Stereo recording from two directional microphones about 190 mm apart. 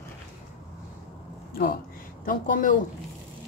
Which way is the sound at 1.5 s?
55° left (ahead or behind).